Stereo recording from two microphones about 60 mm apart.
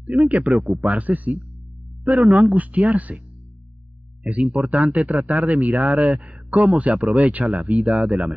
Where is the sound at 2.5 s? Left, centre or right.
Right.